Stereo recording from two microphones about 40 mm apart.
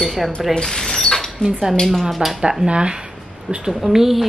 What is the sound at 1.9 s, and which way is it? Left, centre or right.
Speech, centre.